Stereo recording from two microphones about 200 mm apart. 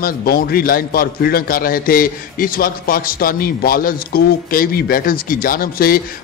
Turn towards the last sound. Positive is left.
turn(degrees=45)  # may be behind; listen again after turning